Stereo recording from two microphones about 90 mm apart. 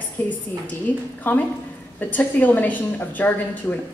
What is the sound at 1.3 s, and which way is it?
A woman's voice, 20° left (ahead or behind).